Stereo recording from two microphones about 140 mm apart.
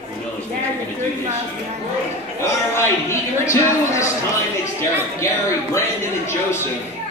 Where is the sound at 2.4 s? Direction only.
20° left (ahead or behind).